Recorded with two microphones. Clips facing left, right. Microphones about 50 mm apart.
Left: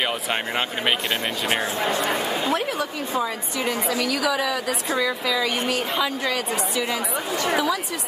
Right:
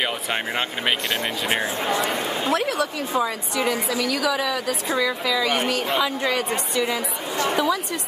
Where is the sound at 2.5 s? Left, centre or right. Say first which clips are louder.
Right 2 dB; centre.